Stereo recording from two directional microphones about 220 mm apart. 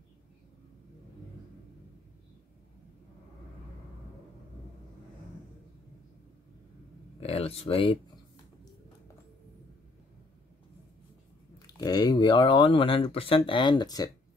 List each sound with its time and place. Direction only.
7.2 s speech: 25° left (ahead or behind)
11.6 s speech: 20° left (ahead or behind)